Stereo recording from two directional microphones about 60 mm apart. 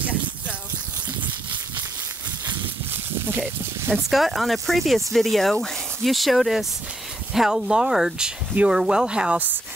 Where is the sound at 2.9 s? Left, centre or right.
Right.